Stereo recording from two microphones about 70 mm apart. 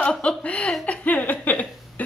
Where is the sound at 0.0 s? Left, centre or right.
Centre.